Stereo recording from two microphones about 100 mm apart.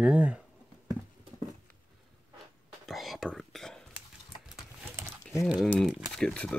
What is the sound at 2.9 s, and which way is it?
Whispering, centre (ahead or behind).